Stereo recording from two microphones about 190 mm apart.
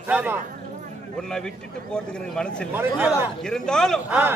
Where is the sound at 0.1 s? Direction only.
10° right (ahead or behind).